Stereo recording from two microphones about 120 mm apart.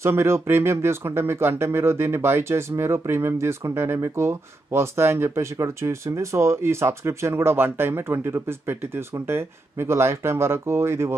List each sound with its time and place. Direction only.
0.0 s speech: 20° right (ahead or behind)